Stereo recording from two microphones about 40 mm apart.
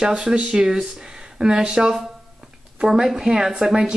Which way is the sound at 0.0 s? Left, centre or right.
Centre.